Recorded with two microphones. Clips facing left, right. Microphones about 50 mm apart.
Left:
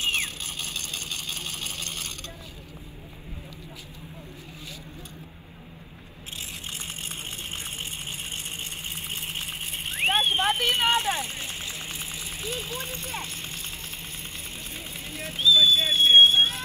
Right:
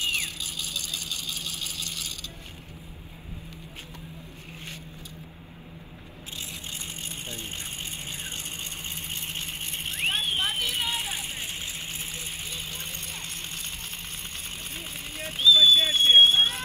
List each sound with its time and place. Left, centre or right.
0.0 s vehicle: left
9.1 s vehicle: centre
10.0 s vehicle: left
11.4 s vehicle: left
12.4 s speech: left
13.2 s music: right
14.8 s speech: right
16.3 s smoke detector: right